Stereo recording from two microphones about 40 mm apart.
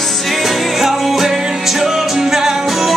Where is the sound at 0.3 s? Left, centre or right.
Centre.